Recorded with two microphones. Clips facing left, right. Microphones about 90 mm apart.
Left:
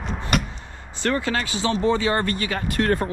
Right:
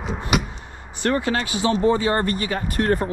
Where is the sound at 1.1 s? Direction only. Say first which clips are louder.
Right 2 dB; 35° right (ahead or behind).